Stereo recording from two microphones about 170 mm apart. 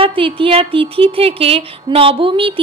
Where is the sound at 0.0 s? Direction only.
30° right (ahead or behind).